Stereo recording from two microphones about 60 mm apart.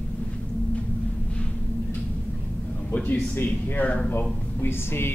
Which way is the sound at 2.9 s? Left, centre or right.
Left.